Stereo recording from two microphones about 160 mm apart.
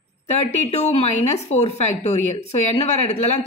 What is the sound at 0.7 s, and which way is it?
Speech, 40° left (ahead or behind).